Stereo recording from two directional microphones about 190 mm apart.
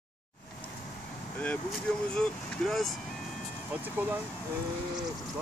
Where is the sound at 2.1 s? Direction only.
Centre (ahead or behind).